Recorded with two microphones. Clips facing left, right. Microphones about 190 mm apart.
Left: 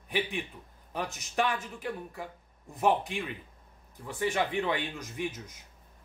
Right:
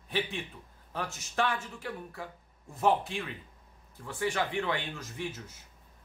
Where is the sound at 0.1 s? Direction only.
15° left (ahead or behind).